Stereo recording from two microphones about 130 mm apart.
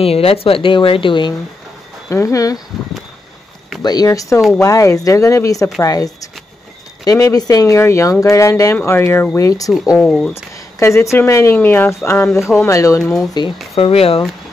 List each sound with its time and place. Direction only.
0.0 s speech: 50° left (ahead or behind)
2.0 s speech: 25° left (ahead or behind)
3.8 s speech: 30° left (ahead or behind)
9.9 s speech: 10° left (ahead or behind)
10.3 s speech: 20° left (ahead or behind)
13.7 s speech: 45° left (ahead or behind)